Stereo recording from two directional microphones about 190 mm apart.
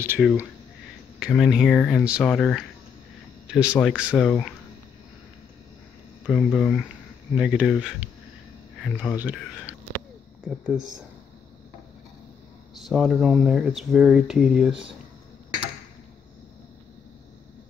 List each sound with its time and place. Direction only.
0.2 s speech: centre (ahead or behind)
6.2 s speech: 5° left (ahead or behind)
12.7 s speech: centre (ahead or behind)